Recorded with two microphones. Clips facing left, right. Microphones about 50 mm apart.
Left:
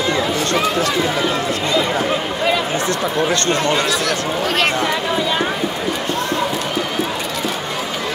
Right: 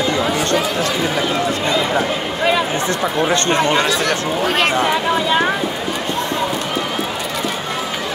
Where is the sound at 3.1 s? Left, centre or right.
Right.